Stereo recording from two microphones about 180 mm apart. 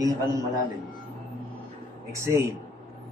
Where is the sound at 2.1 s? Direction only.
15° right (ahead or behind).